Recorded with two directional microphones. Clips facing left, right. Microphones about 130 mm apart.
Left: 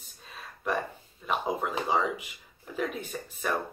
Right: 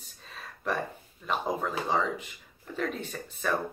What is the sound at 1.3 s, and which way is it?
Speech, 5° left (ahead or behind).